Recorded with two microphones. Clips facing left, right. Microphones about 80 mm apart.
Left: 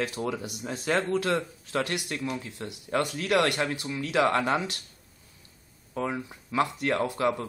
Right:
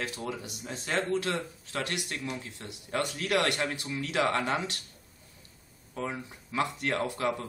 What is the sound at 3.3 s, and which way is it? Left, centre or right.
Speech, centre.